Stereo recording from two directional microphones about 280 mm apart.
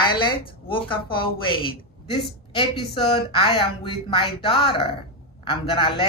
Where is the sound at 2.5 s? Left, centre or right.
Centre.